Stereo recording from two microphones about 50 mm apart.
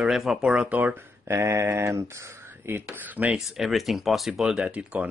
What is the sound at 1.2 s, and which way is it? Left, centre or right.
Speech, right.